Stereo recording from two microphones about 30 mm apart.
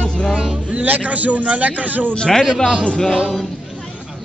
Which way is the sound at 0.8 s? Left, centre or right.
Right.